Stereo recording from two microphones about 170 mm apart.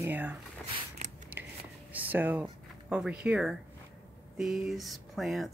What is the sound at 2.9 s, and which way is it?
Speech, 5° right (ahead or behind).